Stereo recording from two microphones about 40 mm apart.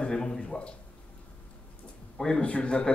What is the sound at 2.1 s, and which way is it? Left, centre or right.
Speech, centre.